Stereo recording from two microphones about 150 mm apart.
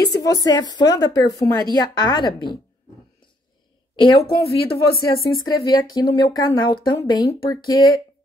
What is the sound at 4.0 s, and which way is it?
Speech, 35° left (ahead or behind).